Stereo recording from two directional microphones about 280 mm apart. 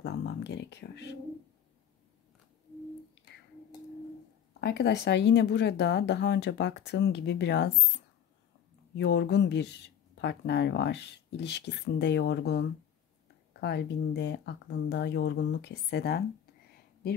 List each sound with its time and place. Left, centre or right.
0.0 s speech: left
4.6 s speech: left
8.9 s speech: left